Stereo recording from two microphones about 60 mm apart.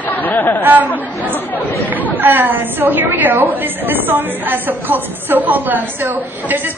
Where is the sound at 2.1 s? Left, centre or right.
Right.